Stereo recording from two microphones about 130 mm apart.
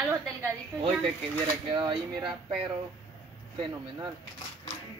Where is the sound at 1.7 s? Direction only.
35° right (ahead or behind).